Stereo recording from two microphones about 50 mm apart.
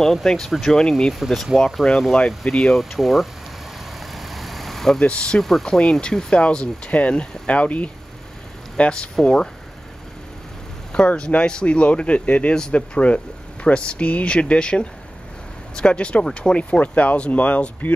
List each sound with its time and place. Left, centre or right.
0.0 s speech: centre
2.2 s speech: centre
2.7 s speech: centre
4.1 s vehicle: centre
5.0 s speech: left
5.4 s speech: centre
5.7 s speech: centre
10.9 s speech: centre